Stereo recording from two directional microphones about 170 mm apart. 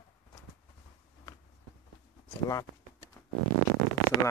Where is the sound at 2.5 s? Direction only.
20° left (ahead or behind).